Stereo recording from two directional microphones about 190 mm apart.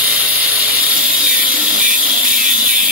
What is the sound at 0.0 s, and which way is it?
Ratchet, 10° right (ahead or behind).